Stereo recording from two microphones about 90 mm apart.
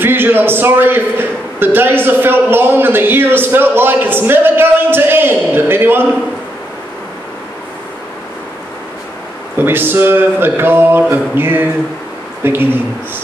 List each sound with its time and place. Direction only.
0.0 s a man's voice: 25° right (ahead or behind)
9.6 s a man's voice: 25° right (ahead or behind)